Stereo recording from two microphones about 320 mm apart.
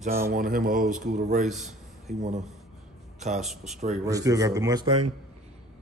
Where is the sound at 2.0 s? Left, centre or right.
Right.